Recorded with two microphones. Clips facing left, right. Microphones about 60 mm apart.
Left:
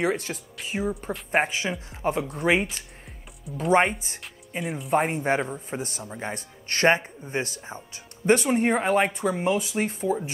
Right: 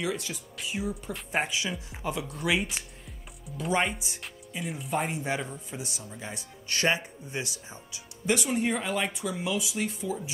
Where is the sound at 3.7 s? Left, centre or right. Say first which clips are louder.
Left 7 dB; left.